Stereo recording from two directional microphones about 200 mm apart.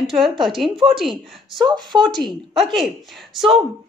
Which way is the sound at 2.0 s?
Centre (ahead or behind).